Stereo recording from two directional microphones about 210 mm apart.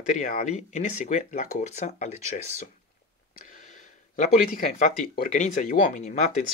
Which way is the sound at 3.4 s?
35° left (ahead or behind).